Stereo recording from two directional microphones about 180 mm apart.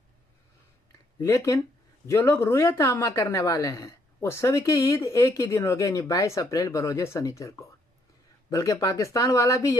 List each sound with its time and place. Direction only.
1.2 s speech: 15° left (ahead or behind)